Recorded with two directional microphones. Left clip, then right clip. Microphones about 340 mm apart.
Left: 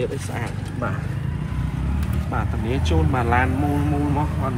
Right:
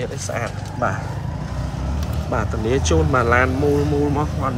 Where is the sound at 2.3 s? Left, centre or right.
Centre.